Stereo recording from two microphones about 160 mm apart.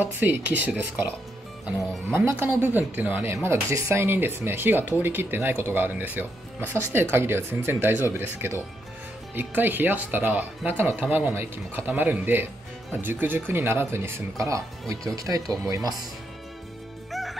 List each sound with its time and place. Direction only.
0.0 s speech: 10° right (ahead or behind)
2.0 s speech: 15° right (ahead or behind)
17.1 s music: centre (ahead or behind)